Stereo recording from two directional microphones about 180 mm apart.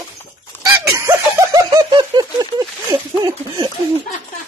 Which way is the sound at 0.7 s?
15° right (ahead or behind).